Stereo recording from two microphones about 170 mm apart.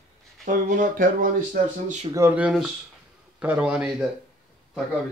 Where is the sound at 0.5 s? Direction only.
50° right (ahead or behind).